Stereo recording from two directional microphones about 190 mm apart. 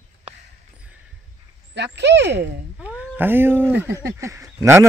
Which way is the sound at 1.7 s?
65° right (ahead or behind).